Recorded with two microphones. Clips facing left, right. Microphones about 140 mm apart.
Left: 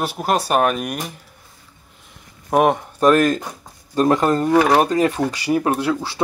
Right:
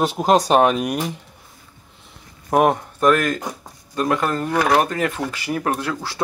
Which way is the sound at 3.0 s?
30° left (ahead or behind).